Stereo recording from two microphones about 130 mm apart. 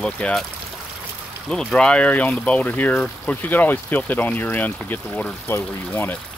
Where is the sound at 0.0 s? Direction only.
5° left (ahead or behind).